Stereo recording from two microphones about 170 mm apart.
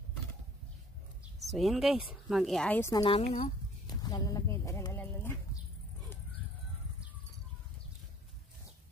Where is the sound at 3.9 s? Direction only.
25° left (ahead or behind).